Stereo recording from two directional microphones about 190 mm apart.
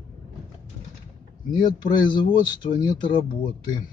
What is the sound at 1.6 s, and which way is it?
Speech, 25° left (ahead or behind).